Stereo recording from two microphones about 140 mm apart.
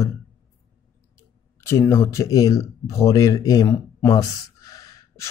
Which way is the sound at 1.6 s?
20° left (ahead or behind).